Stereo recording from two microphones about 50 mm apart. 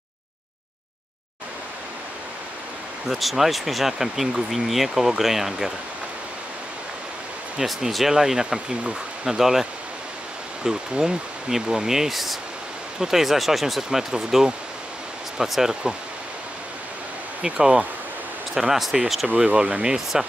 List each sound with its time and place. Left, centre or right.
3.1 s speech: centre
7.6 s speech: centre
17.4 s speech: centre
19.2 s speech: centre